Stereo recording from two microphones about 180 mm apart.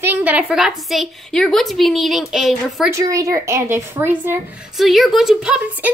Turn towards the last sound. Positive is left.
turn(degrees=-5)  # may be behind; listen again after turning